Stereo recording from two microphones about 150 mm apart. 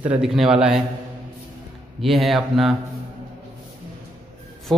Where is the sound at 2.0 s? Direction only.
Centre (ahead or behind).